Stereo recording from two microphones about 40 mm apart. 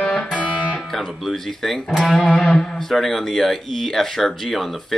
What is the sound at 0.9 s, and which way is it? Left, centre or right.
Speech, centre.